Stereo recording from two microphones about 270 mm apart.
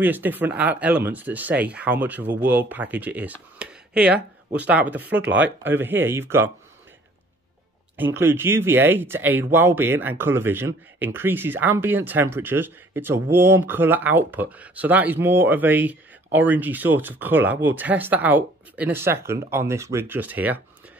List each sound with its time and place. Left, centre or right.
0.0 s speech: centre
3.5 s a sound: centre
4.6 s speech: centre
7.9 s speech: centre